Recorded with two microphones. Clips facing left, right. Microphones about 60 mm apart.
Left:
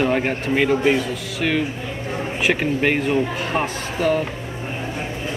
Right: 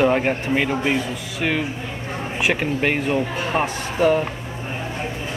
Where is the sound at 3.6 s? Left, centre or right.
Centre.